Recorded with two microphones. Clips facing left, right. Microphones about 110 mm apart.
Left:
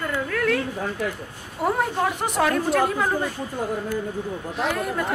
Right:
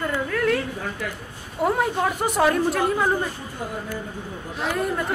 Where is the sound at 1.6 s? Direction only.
Centre (ahead or behind).